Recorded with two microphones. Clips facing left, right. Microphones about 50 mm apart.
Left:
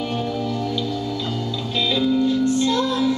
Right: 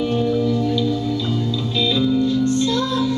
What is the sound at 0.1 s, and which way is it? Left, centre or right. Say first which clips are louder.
Music: right 6 dB; centre.